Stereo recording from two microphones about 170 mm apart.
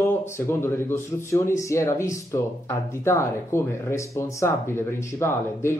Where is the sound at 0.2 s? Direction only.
15° left (ahead or behind).